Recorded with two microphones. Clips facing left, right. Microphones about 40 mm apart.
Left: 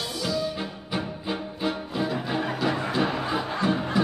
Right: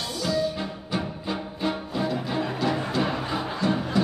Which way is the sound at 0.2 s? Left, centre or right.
Centre.